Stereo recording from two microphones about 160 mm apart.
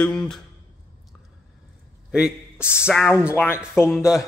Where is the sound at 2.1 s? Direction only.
5° right (ahead or behind).